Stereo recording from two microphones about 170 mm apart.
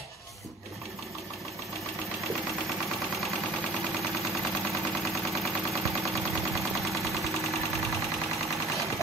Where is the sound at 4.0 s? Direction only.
Centre (ahead or behind).